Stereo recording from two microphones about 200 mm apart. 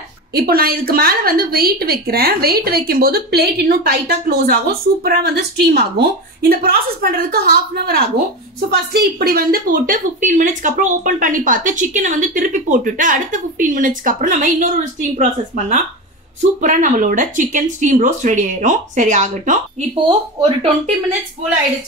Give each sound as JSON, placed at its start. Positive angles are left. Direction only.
{"t": 0.3, "sound": "a woman's voice", "side_deg": -50}